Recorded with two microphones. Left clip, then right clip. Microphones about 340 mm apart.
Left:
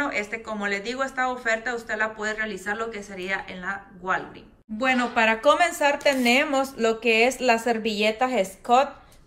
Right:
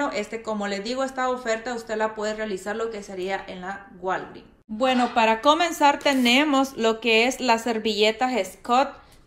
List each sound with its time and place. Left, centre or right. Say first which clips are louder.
0.0 s speech: even; centre
5.2 s speech: left 1 dB; centre